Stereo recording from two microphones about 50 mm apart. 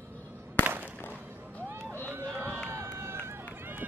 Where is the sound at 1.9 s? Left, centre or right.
Right.